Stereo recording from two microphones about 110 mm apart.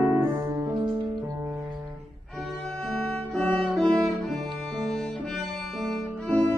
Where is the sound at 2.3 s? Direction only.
Centre (ahead or behind).